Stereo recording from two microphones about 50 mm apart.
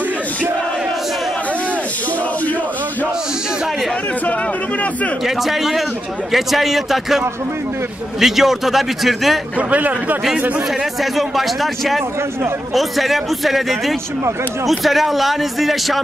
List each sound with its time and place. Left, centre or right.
5.2 s speech: centre
9.6 s a man's voice: right
11.0 s speech: centre